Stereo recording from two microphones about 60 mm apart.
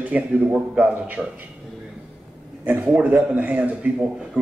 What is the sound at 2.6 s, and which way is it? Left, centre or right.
A man's voice, right.